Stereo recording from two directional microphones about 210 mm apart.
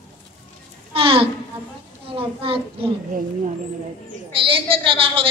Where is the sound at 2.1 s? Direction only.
25° right (ahead or behind).